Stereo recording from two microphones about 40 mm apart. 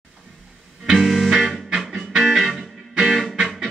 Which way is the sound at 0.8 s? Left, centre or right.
Centre.